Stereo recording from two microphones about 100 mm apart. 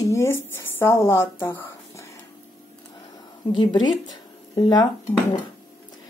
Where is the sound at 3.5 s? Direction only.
45° left (ahead or behind).